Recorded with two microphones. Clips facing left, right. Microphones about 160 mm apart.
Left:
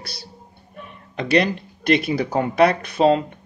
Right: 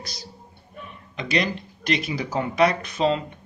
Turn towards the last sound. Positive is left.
turn(degrees=55)  # may be behind; listen again after turning